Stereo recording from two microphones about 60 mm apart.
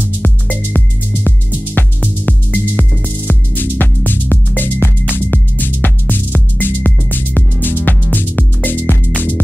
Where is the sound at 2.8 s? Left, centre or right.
Centre.